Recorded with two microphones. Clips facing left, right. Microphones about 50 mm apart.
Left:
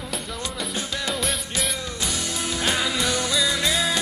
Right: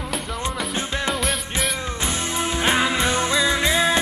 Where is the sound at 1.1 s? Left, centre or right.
Centre.